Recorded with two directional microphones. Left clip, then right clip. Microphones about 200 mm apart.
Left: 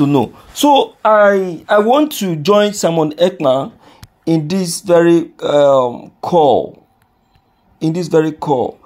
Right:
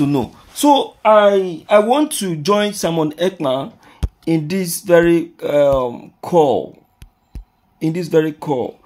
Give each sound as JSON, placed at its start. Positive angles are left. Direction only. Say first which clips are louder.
{"t": 0.0, "sound": "speech", "louder": "left 5 dB", "side_deg": 20}
{"t": 1.7, "sound": "speech", "louder": "left 2 dB", "side_deg": 15}
{"t": 7.8, "sound": "speech", "louder": "left 2 dB", "side_deg": 10}